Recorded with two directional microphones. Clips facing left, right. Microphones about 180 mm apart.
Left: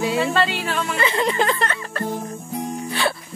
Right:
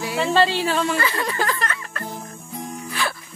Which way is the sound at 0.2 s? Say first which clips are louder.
Right 2 dB; 30° right (ahead or behind).